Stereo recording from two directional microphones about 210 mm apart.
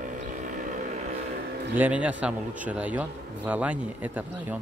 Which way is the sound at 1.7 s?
5° right (ahead or behind).